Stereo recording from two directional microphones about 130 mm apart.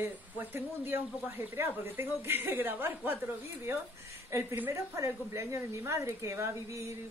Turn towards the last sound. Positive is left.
turn(degrees=-25)  # may be behind; listen again after turning